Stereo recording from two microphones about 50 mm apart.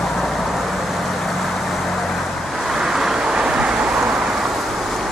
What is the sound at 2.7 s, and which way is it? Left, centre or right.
Vehicle, centre.